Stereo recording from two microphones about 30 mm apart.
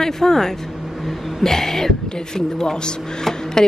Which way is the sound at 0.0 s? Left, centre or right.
Centre.